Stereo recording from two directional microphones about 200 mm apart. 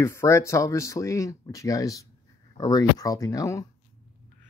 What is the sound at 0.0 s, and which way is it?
Speech, 15° left (ahead or behind).